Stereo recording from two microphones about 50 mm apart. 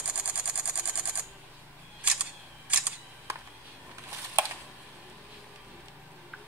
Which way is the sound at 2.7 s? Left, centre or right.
Right.